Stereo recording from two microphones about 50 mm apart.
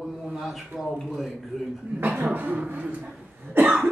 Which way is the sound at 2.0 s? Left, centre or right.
Right.